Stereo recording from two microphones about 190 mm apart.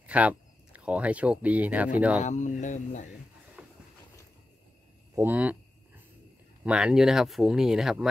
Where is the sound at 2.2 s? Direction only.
40° left (ahead or behind).